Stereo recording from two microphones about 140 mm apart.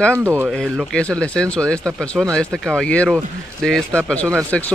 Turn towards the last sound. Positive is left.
turn(degrees=10)  # may be behind; listen again after turning